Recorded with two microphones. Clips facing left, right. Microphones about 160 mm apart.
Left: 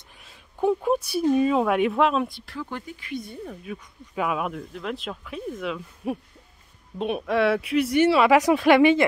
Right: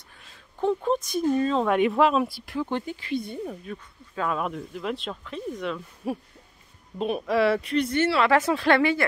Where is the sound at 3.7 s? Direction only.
10° left (ahead or behind).